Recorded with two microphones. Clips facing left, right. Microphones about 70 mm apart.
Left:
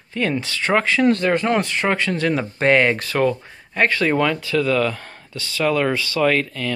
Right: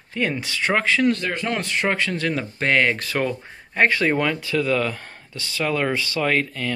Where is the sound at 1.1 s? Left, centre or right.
Left.